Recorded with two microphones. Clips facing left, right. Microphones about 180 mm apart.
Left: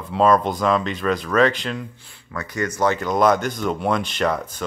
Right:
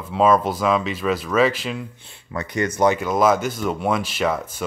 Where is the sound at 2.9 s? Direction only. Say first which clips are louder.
Even; 5° right (ahead or behind).